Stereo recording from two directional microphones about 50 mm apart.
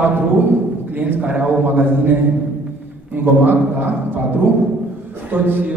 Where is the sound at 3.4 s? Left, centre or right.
Right.